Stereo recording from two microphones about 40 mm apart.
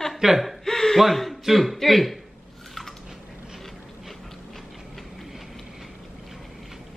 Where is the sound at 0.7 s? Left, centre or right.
Centre.